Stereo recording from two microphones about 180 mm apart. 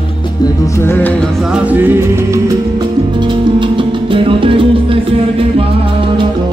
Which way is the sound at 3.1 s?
25° right (ahead or behind).